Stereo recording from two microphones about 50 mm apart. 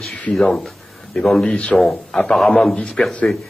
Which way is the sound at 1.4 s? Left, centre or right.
Centre.